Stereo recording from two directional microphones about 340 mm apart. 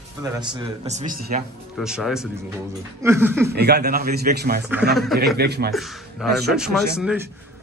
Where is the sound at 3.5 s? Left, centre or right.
Right.